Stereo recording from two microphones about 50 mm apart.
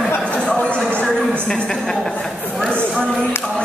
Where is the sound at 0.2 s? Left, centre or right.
Centre.